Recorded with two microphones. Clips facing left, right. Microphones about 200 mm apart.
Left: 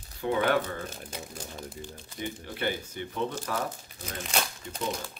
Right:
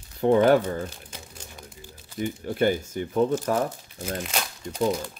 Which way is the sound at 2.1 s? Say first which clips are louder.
Right 10 dB; 45° right (ahead or behind).